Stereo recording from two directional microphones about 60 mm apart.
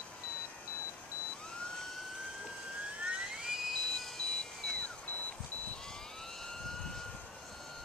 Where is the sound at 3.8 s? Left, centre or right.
Centre.